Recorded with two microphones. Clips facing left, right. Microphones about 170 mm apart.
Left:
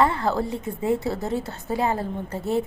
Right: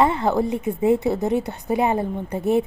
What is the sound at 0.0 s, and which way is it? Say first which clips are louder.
A woman's voice: right 3 dB; 20° right (ahead or behind).